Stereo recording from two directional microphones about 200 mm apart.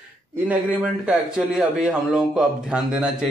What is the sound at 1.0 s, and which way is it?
Speech, 5° right (ahead or behind).